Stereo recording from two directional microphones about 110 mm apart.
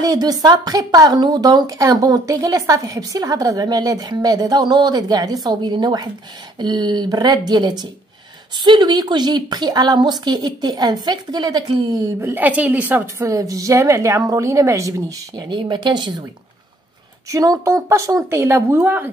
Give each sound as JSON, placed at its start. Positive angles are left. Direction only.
{"t": 0.0, "sound": "speech", "side_deg": -35}
{"t": 12.2, "sound": "a woman's voice", "side_deg": -20}
{"t": 15.5, "sound": "speech", "side_deg": -40}
{"t": 17.3, "sound": "speech", "side_deg": -30}